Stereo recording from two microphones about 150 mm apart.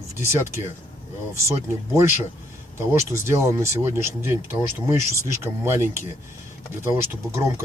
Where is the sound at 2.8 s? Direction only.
15° right (ahead or behind).